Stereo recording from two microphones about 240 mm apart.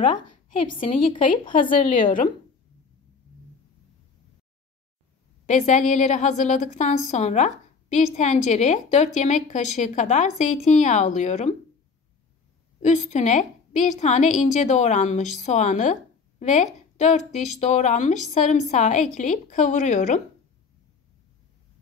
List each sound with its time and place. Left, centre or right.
0.0 s a woman's voice: left
1.5 s speech: left
5.5 s a woman's voice: left
12.8 s a woman's voice: left